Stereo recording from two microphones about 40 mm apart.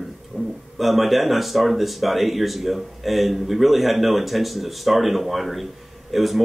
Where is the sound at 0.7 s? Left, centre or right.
Centre.